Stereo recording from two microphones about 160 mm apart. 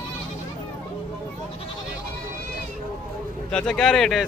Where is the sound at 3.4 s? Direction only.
5° left (ahead or behind).